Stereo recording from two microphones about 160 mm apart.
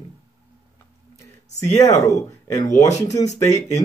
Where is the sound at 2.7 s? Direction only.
45° left (ahead or behind).